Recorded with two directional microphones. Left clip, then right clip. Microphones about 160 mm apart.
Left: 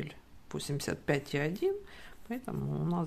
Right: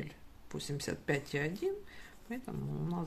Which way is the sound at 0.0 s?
40° left (ahead or behind).